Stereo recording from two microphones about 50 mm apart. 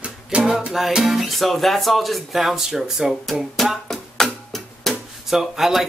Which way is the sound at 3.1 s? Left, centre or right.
Centre.